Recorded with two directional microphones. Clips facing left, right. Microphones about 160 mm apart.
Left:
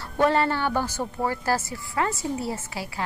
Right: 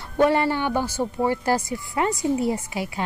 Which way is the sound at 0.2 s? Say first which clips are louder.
Right 2 dB; 15° right (ahead or behind).